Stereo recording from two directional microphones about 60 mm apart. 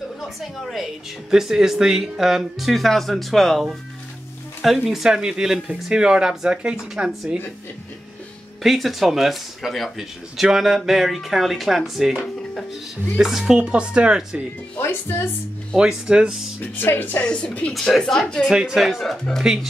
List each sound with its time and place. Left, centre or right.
0.4 s speech: centre
8.6 s speech: centre
13.2 s speech: centre
14.8 s speech: left
15.7 s speech: centre
16.7 s speech: left
17.2 s speech: centre
17.7 s speech: centre
18.5 s speech: centre
19.4 s speech: centre